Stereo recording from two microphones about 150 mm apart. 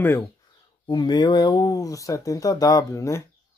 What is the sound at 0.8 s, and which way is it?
Speech, 30° left (ahead or behind).